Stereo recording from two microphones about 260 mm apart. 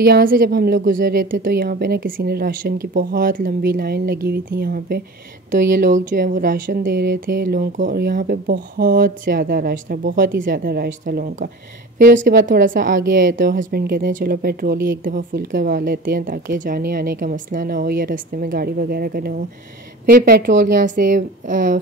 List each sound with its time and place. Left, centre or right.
0.0 s speech: right